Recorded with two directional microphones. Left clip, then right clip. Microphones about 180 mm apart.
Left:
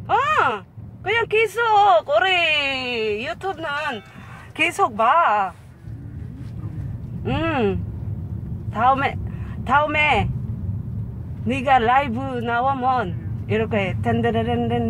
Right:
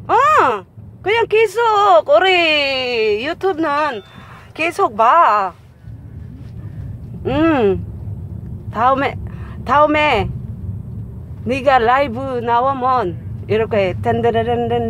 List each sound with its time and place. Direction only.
0.0 s speech: 30° right (ahead or behind)
4.6 s speech: 20° right (ahead or behind)
7.2 s speech: 25° right (ahead or behind)
11.4 s speech: 25° right (ahead or behind)